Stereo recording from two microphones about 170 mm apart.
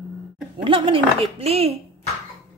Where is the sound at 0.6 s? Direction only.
30° right (ahead or behind).